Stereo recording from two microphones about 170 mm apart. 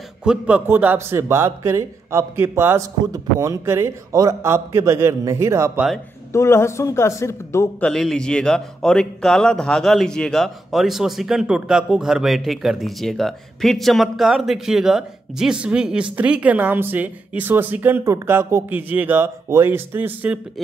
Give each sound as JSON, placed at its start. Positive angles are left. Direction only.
{"t": 0.2, "sound": "a man's voice", "side_deg": -5}
{"t": 6.3, "sound": "speech", "side_deg": 15}
{"t": 7.8, "sound": "speech", "side_deg": 0}